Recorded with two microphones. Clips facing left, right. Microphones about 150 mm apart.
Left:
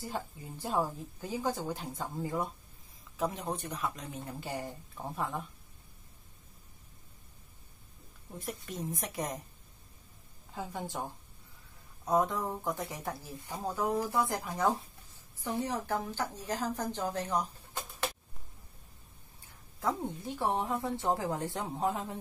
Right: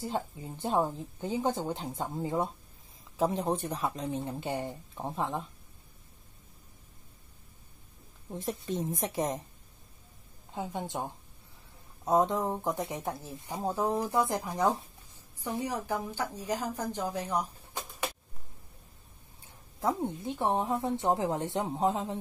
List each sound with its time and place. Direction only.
0.0 s speech: 25° right (ahead or behind)
8.3 s speech: 25° right (ahead or behind)
10.5 s speech: 20° right (ahead or behind)
19.8 s speech: 20° right (ahead or behind)